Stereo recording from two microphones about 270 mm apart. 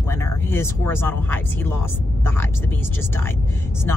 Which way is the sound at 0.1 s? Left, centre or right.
Centre.